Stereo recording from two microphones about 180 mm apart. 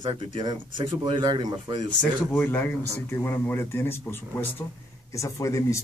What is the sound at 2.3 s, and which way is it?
Speech, 10° left (ahead or behind).